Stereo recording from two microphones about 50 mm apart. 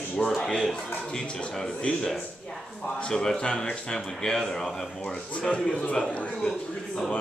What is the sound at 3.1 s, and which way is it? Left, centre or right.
A man's voice, centre.